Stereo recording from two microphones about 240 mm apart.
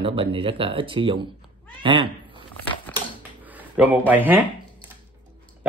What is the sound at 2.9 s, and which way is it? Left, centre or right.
Crushing, centre.